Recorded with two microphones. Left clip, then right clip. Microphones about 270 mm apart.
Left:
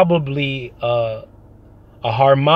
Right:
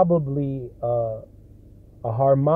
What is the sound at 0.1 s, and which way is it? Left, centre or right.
Speech, left.